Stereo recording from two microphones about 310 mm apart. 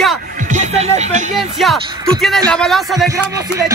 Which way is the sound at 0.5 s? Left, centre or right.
Right.